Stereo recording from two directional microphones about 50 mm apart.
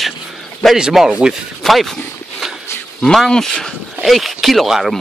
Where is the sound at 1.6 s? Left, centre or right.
Centre.